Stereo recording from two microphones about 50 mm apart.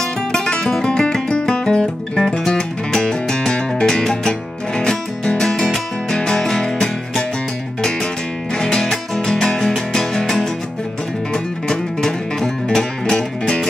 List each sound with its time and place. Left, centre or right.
0.0 s music: centre
8.5 s music: centre